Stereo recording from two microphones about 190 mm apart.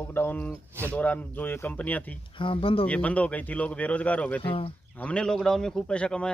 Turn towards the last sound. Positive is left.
turn(degrees=5)  # may be behind; listen again after turning